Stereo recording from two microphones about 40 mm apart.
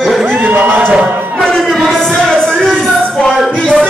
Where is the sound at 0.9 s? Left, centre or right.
Right.